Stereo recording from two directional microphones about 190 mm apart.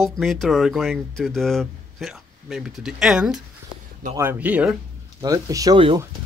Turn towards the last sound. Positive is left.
turn(degrees=-25)  # may be behind; listen again after turning